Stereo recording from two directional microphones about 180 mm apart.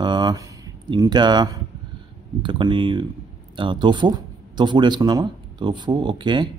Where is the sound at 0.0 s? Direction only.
25° right (ahead or behind).